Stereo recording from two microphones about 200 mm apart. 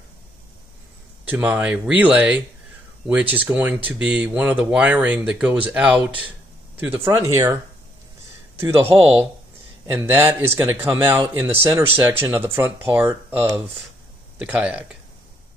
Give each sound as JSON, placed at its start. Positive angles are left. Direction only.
{"t": 1.2, "sound": "speech", "side_deg": -10}
{"t": 8.5, "sound": "speech", "side_deg": -10}
{"t": 8.9, "sound": "speech", "side_deg": -30}
{"t": 9.9, "sound": "speech", "side_deg": -10}